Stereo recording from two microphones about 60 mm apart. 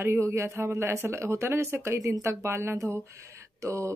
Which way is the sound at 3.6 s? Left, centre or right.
Right.